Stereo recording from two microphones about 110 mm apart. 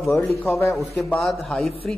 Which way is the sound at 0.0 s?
Centre (ahead or behind).